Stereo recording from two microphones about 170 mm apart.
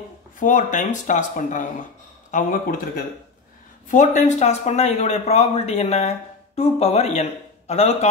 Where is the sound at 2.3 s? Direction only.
55° left (ahead or behind).